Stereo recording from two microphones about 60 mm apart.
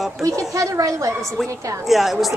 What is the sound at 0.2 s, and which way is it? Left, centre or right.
Speech, right.